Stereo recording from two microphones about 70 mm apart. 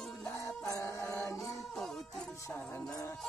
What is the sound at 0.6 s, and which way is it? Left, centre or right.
Speech, left.